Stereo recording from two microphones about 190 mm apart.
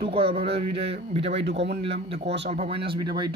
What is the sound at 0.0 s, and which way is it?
Speech, 30° right (ahead or behind).